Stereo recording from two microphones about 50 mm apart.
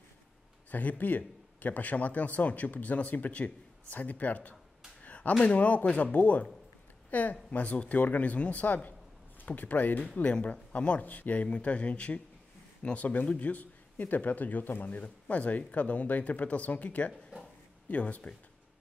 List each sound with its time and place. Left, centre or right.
0.7 s speech: left
5.0 s a sound: left
5.4 s speech: left
10.3 s speech: left